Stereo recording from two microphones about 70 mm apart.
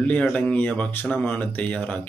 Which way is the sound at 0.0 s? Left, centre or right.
Centre.